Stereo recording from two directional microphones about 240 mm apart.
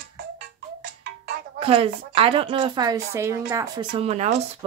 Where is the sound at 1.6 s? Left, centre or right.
Right.